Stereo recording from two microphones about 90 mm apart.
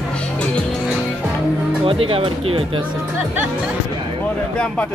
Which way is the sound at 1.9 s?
90° right.